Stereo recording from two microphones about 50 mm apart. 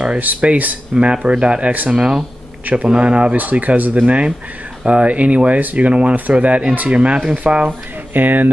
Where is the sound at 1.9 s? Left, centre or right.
Centre.